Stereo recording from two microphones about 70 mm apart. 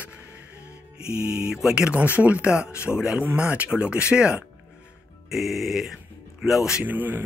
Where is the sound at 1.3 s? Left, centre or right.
Centre.